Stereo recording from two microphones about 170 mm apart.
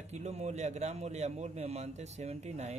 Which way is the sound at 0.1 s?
40° right (ahead or behind).